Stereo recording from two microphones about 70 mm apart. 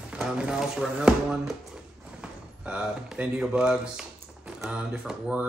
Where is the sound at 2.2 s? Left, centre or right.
Centre.